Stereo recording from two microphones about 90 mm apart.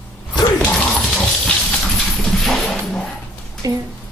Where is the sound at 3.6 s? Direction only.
45° right (ahead or behind).